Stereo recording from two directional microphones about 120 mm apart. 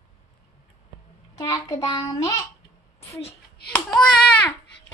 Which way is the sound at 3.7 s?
5° left (ahead or behind).